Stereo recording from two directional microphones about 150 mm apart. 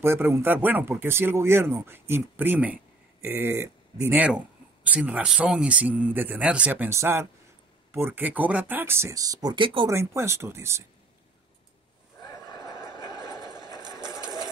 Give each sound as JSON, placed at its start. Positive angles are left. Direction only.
{"t": 0.0, "sound": "speech", "side_deg": -15}
{"t": 9.8, "sound": "speech", "side_deg": -20}
{"t": 13.5, "sound": "vehicle", "side_deg": -25}